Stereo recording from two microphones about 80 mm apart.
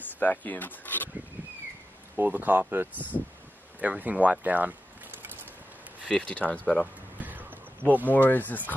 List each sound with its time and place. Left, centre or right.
0.2 s speech: left
2.1 s speech: right
6.0 s speech: centre
7.2 s a sound: right
8.1 s speech: left